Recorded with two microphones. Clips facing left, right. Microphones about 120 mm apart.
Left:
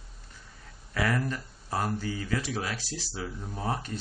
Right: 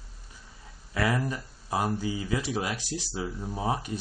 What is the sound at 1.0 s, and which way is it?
Speech, 15° right (ahead or behind).